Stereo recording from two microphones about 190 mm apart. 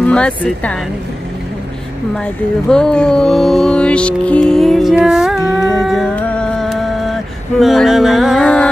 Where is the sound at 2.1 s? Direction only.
5° left (ahead or behind).